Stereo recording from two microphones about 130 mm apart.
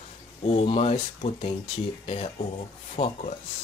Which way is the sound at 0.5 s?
50° left (ahead or behind).